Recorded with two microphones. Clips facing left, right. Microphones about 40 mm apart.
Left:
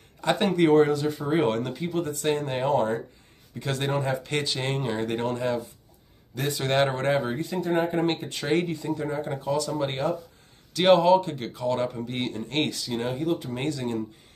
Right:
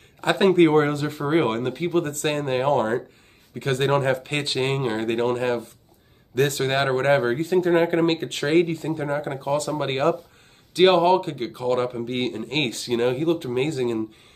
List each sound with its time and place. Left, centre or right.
0.2 s a man's voice: right
3.9 s speech: right
4.2 s speech: right
6.3 s speech: right
6.9 s speech: right
10.7 s speech: right